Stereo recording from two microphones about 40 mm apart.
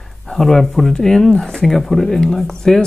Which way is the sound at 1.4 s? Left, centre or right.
Centre.